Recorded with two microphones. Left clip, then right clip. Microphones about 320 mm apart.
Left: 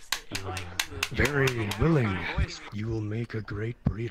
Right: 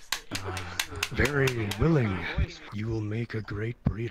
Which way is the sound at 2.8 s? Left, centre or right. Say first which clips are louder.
Right 1 dB; centre.